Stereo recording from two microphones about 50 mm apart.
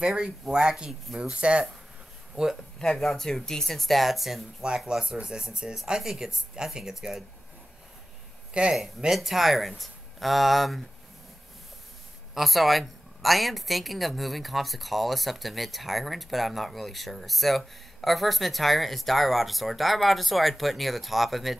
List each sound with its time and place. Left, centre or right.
0.0 s speech: centre
3.0 s a woman's voice: centre
8.6 s speech: right
9.1 s a woman's voice: centre
12.4 s a woman's voice: centre